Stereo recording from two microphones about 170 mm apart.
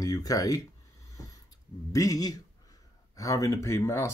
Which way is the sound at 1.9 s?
20° left (ahead or behind).